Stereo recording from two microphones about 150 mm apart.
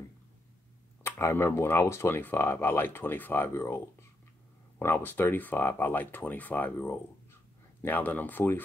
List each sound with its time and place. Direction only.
1.0 s speech: 15° left (ahead or behind)